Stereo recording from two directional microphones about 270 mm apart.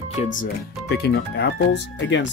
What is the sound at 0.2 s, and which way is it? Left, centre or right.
Speech, left.